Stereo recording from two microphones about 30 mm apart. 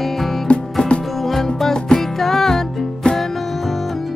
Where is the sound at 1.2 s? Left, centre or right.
Centre.